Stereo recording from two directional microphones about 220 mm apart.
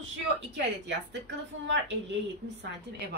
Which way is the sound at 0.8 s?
55° right (ahead or behind).